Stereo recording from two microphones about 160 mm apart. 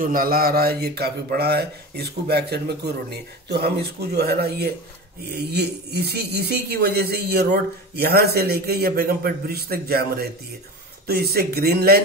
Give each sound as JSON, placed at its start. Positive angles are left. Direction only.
{"t": 0.0, "sound": "speech", "side_deg": -60}
{"t": 5.3, "sound": "speech", "side_deg": -90}